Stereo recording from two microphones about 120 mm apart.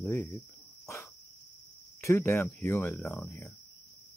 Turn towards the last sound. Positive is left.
turn(degrees=20)  # may be behind; listen again after turning